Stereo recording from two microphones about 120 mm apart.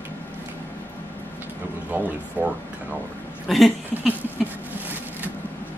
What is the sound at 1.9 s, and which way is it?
Speech, 15° right (ahead or behind).